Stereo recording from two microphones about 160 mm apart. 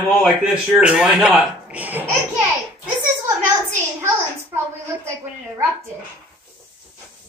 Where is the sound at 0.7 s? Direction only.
5° right (ahead or behind).